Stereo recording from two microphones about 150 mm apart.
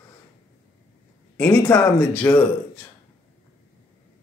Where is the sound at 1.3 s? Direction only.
10° left (ahead or behind).